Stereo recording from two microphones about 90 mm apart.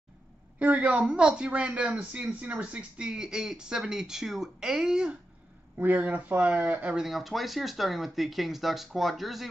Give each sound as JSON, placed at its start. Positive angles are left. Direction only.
{"t": 0.6, "sound": "speech", "side_deg": -15}
{"t": 5.8, "sound": "speech", "side_deg": -20}
{"t": 7.1, "sound": "speech", "side_deg": 0}